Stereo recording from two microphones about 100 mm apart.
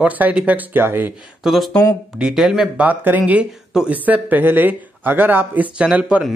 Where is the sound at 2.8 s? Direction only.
20° right (ahead or behind).